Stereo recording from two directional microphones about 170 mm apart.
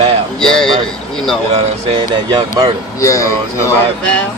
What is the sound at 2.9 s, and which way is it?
Speech, 20° left (ahead or behind).